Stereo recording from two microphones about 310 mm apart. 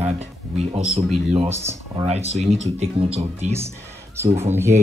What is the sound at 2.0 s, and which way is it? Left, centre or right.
Speech, centre.